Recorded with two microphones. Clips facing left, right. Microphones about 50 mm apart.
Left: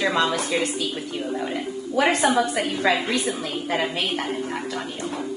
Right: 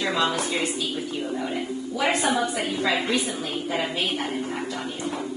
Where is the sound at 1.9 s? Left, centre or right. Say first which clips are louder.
Left 4 dB; left.